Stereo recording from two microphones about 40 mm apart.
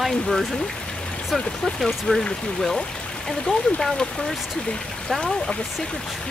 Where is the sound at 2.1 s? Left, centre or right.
Left.